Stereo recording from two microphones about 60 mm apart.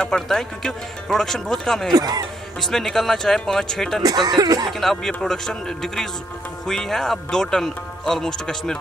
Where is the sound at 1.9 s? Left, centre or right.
Right.